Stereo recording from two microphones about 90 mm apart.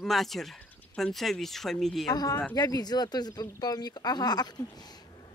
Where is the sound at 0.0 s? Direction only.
Centre (ahead or behind).